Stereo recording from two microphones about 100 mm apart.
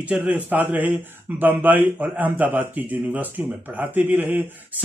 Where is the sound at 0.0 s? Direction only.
15° right (ahead or behind).